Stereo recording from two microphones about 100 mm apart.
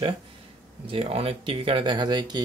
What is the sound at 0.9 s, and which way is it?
Speech, 70° right (ahead or behind).